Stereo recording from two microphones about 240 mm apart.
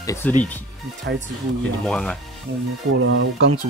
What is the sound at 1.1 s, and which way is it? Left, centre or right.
Speech, right.